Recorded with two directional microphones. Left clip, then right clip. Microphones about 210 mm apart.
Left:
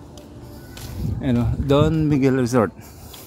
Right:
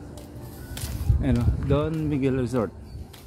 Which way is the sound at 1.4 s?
45° left (ahead or behind).